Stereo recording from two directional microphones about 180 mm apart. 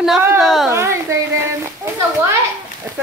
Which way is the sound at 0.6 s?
15° right (ahead or behind).